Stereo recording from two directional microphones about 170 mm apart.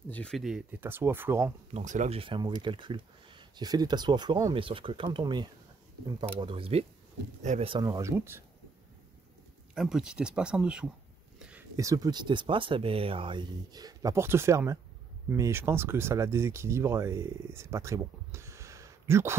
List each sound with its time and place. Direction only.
0.1 s speech: 5° left (ahead or behind); by 1.5 s 15° right (ahead or behind)
1.7 s speech: 45° right (ahead or behind)
7.7 s speech: 20° right (ahead or behind)
9.8 s speech: 5° right (ahead or behind)
11.3 s a sound: 5° right (ahead or behind)
11.7 s speech: 20° right (ahead or behind)